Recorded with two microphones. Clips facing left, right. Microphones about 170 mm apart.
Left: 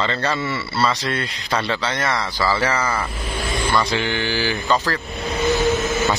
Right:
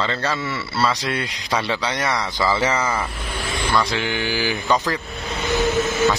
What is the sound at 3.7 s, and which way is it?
Speech, centre (ahead or behind).